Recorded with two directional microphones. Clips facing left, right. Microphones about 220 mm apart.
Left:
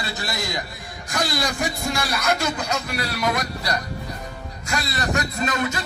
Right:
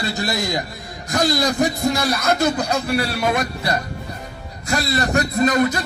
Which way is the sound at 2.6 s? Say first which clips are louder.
Right 6 dB; 30° right (ahead or behind).